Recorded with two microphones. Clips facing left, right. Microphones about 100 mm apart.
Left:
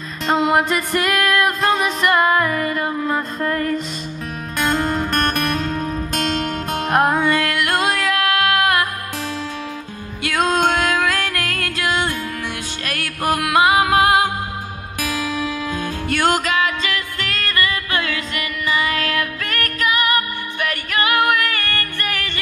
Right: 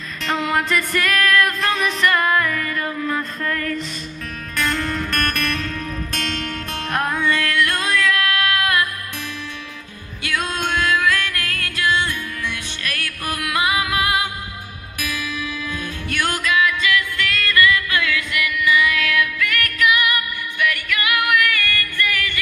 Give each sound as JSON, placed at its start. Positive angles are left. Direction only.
{"t": 0.5, "sound": "music", "side_deg": 25}
{"t": 10.2, "sound": "music", "side_deg": 25}
{"t": 10.6, "sound": "music", "side_deg": 55}
{"t": 10.9, "sound": "music", "side_deg": 30}
{"t": 15.2, "sound": "music", "side_deg": 25}